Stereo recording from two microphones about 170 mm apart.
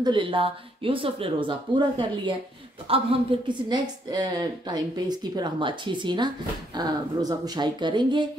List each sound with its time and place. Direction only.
0.0 s a woman's voice: 30° right (ahead or behind)